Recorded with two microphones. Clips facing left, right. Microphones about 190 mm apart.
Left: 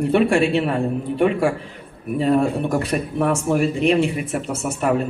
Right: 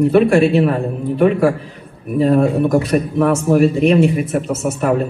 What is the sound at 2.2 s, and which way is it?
Speech, 35° right (ahead or behind).